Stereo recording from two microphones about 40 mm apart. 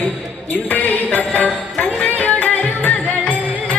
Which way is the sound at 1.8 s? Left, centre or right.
Left.